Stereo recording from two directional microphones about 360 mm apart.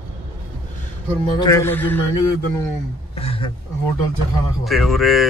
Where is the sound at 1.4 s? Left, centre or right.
Centre.